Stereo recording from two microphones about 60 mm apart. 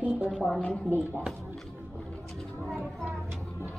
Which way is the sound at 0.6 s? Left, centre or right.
Centre.